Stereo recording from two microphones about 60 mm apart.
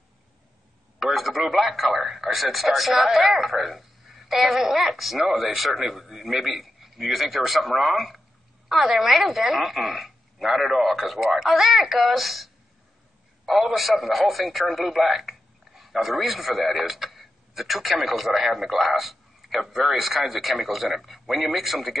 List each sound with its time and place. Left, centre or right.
0.9 s speech: centre
13.5 s a man's voice: centre